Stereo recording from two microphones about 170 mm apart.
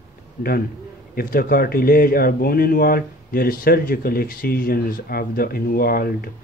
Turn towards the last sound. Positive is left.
turn(degrees=65)  # may be behind; listen again after turning